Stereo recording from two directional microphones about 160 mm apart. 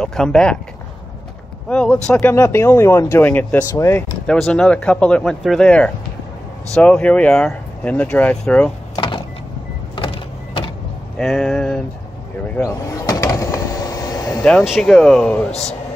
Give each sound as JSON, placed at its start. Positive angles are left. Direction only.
{"t": 0.0, "sound": "speech", "side_deg": 5}
{"t": 1.7, "sound": "speech", "side_deg": 5}
{"t": 8.9, "sound": "power windows", "side_deg": 30}
{"t": 9.9, "sound": "vehicle", "side_deg": 35}
{"t": 11.1, "sound": "speech", "side_deg": 5}
{"t": 12.6, "sound": "vehicle", "side_deg": 20}
{"t": 14.4, "sound": "speech", "side_deg": 0}